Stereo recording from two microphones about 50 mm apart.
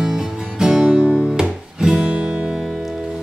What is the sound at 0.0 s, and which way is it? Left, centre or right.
Music, centre.